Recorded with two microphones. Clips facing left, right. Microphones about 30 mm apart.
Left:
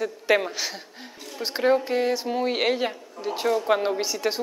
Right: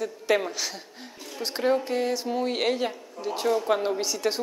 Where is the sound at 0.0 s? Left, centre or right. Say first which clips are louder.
Left 2 dB; centre.